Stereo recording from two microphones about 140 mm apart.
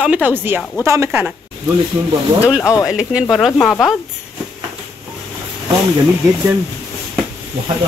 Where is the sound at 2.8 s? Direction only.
5° right (ahead or behind).